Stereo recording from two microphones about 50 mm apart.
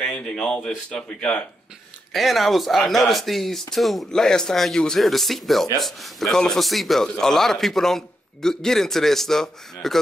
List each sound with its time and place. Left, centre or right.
0.0 s a man's voice: centre
2.1 s a man's voice: centre
6.3 s a man's voice: centre
6.6 s a man's voice: centre